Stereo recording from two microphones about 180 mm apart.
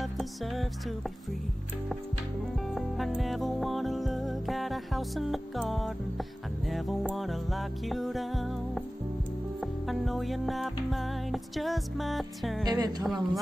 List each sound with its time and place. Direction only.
0.0 s music: centre (ahead or behind)
2.7 s music: centre (ahead or behind)
9.8 s music: centre (ahead or behind)
12.6 s a woman's voice: 20° right (ahead or behind)
13.0 s music: centre (ahead or behind)